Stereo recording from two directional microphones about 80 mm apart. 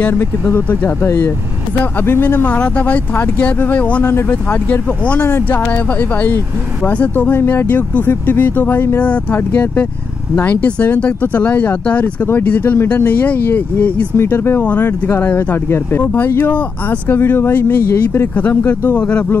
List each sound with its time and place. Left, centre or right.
0.5 s speech: left
2.5 s speech: centre
4.0 s speech: left
14.1 s speech: left